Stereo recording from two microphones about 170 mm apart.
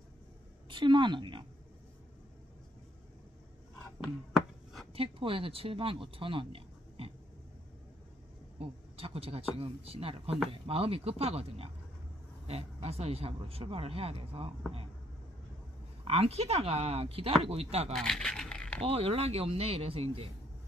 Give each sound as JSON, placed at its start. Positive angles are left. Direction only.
{"t": 0.7, "sound": "a woman's voice", "side_deg": -30}
{"t": 4.9, "sound": "speech", "side_deg": -30}
{"t": 8.5, "sound": "speech", "side_deg": -35}
{"t": 16.0, "sound": "speech", "side_deg": -35}
{"t": 17.9, "sound": "crumpling", "side_deg": 0}
{"t": 18.9, "sound": "speech", "side_deg": -35}